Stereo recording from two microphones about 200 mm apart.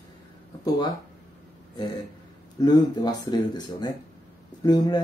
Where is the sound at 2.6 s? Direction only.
20° left (ahead or behind).